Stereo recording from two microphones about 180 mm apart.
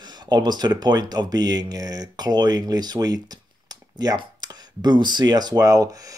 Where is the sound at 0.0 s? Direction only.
25° right (ahead or behind).